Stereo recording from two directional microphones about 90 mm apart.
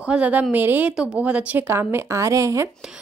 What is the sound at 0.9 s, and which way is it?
A woman's voice, 10° right (ahead or behind).